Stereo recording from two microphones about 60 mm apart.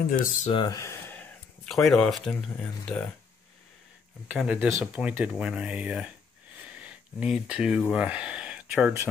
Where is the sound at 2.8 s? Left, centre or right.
Centre.